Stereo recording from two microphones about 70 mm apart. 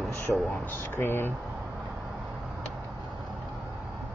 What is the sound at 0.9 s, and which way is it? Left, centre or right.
Speech, left.